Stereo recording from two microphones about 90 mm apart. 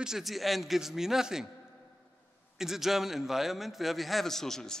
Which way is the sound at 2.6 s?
5° right (ahead or behind).